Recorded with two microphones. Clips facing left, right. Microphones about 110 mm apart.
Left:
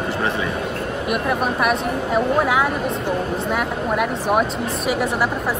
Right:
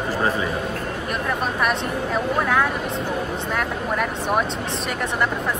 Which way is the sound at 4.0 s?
5° left (ahead or behind).